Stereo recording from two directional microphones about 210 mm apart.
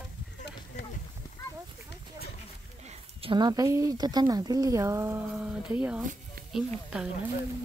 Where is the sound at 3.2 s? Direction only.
25° right (ahead or behind); by 6.0 s 5° right (ahead or behind).